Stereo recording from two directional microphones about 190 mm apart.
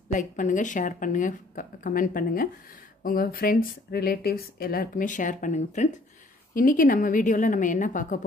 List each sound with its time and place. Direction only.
0.1 s speech: 40° left (ahead or behind)